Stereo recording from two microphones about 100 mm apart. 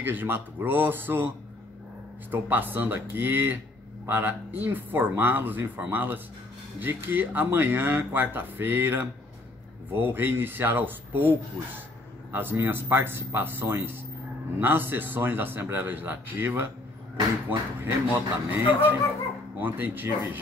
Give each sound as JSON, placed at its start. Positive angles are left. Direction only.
{"t": 0.0, "sound": "speech", "side_deg": -20}
{"t": 2.3, "sound": "speech", "side_deg": -20}